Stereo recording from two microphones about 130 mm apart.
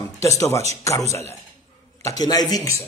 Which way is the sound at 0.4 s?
20° left (ahead or behind).